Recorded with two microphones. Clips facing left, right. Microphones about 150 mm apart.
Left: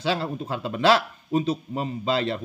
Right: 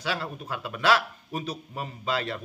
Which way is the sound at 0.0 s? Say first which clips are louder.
Left 6 dB; 25° left (ahead or behind).